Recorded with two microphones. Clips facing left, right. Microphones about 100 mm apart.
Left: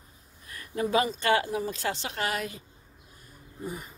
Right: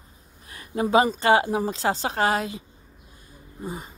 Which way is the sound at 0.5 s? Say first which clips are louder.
Right 6 dB; 20° right (ahead or behind).